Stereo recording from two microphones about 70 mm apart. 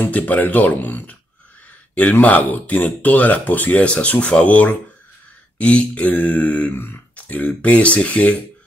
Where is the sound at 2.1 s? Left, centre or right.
Left.